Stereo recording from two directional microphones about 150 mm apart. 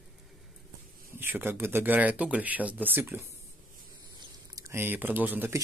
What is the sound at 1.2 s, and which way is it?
Speech, 15° right (ahead or behind).